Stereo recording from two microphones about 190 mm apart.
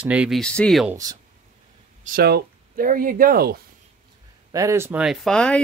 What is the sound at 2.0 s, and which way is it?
Speech, 55° right (ahead or behind).